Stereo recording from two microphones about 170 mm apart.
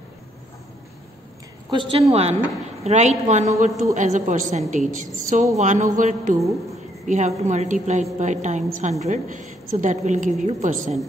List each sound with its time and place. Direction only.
1.7 s a woman's voice: 30° right (ahead or behind); by 11.0 s 45° right (ahead or behind)